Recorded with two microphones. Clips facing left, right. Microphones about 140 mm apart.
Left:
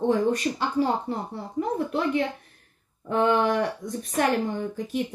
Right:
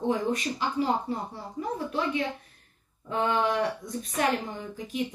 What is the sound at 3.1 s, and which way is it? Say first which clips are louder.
Speech: left 4 dB; 55° left (ahead or behind).